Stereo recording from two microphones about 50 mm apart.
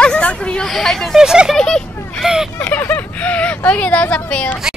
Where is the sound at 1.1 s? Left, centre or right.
Centre.